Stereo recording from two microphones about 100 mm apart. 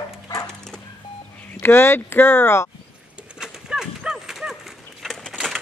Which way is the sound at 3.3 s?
5° right (ahead or behind).